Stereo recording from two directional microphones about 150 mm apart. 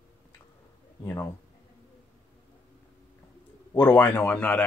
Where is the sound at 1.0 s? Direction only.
20° left (ahead or behind).